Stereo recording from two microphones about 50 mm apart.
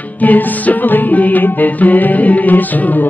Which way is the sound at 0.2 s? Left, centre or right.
Left.